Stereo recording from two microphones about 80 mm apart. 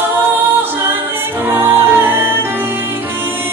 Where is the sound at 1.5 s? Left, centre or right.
Right.